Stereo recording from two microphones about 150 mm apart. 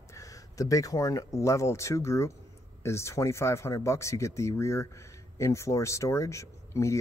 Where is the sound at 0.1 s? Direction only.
20° left (ahead or behind).